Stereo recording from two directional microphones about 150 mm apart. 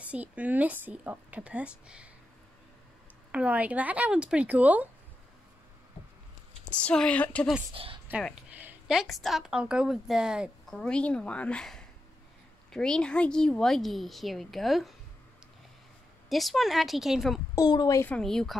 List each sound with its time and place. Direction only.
0.0 s a woman's voice: 10° right (ahead or behind)
3.3 s a woman's voice: 10° right (ahead or behind)
6.6 s a woman's voice: 10° left (ahead or behind)
7.7 s a woman's voice: 35° right (ahead or behind)
8.5 s a woman's voice: 10° right (ahead or behind)
10.8 s a woman's voice: 5° left (ahead or behind)
16.3 s a woman's voice: centre (ahead or behind)
17.6 s speech: 25° left (ahead or behind)
18.0 s a woman's voice: 5° left (ahead or behind)